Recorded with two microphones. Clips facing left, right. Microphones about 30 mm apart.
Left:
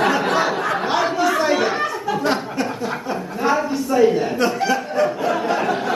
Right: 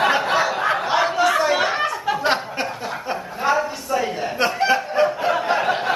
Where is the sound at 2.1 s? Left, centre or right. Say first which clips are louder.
Even; right.